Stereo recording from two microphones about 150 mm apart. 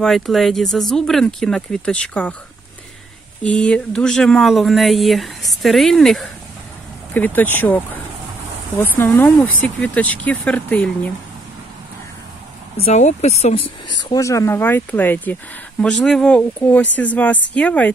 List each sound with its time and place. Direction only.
0.0 s speech: centre (ahead or behind)
3.4 s speech: 5° left (ahead or behind)
7.2 s speech: 10° left (ahead or behind)
12.7 s speech: 45° left (ahead or behind)
13.9 s speech: 25° left (ahead or behind); by 17.9 s 10° left (ahead or behind)